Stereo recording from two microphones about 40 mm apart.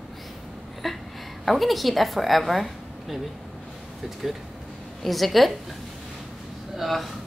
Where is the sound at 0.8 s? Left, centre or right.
Centre.